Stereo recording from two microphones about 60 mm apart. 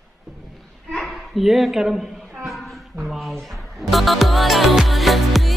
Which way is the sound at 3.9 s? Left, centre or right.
Centre.